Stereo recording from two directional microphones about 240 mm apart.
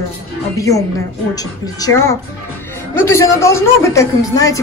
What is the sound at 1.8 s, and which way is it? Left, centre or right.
A woman's voice, centre.